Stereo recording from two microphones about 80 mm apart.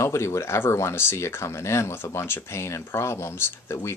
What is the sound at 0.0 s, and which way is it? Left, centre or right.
Speech, left.